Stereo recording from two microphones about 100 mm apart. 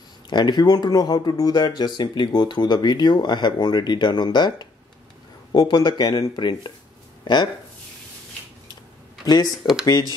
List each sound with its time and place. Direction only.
0.3 s speech: 45° left (ahead or behind)
9.2 s speech: 40° left (ahead or behind)